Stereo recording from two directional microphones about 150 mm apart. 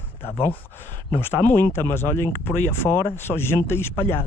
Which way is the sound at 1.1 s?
15° left (ahead or behind).